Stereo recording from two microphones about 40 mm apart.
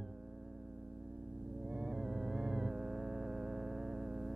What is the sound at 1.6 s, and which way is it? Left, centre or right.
Synthesizer, centre.